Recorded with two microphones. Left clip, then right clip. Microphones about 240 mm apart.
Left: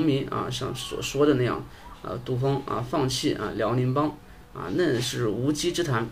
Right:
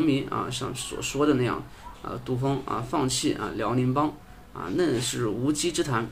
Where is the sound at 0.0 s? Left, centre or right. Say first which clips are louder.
Even; centre.